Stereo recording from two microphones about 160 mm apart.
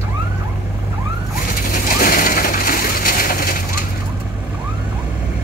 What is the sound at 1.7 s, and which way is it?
Bird, 60° left (ahead or behind).